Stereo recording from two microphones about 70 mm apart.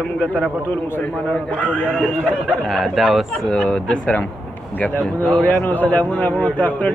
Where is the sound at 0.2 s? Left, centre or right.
Left.